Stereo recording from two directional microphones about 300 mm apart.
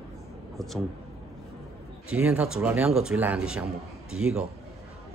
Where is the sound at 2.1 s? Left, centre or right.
Centre.